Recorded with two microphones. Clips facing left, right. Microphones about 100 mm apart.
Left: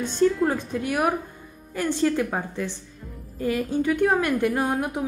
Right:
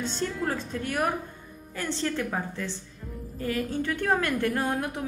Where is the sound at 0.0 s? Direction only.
10° left (ahead or behind).